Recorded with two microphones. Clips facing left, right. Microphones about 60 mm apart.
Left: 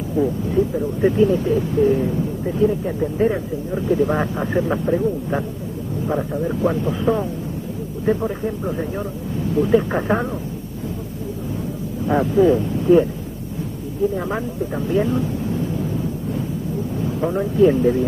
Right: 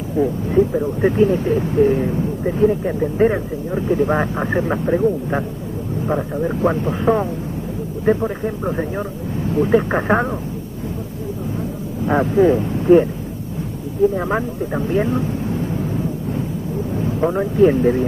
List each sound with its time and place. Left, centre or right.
0.2 s speech: right
6.4 s speech: right
8.5 s speech: right
12.1 s speech: right
14.3 s speech: right
17.0 s speech: right